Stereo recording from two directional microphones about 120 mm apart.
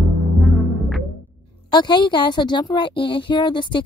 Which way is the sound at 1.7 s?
40° left (ahead or behind).